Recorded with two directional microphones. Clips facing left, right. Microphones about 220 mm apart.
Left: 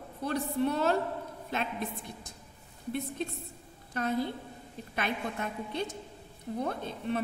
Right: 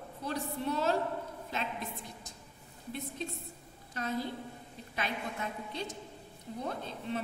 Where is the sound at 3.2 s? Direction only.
55° left (ahead or behind).